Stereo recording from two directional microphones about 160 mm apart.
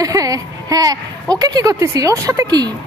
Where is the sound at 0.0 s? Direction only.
20° right (ahead or behind).